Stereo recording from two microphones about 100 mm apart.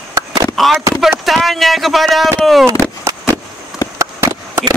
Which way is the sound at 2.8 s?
35° right (ahead or behind).